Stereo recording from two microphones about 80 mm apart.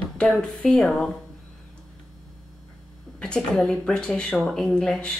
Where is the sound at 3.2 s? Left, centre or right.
Centre.